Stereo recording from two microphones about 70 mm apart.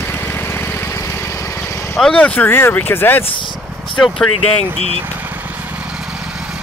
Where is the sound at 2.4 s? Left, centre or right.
Left.